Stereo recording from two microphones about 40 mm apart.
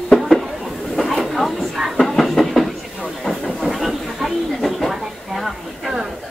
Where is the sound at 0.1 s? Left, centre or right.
Centre.